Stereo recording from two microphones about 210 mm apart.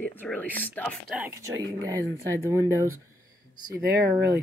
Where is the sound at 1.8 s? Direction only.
15° right (ahead or behind).